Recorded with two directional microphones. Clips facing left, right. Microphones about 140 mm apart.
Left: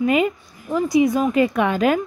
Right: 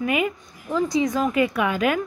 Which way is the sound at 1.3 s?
35° left (ahead or behind).